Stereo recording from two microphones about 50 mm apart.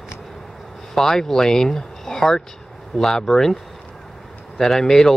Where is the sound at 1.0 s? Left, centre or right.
Centre.